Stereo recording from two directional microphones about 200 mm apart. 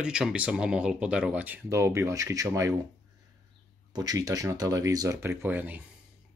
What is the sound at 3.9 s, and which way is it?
Speech, 20° right (ahead or behind).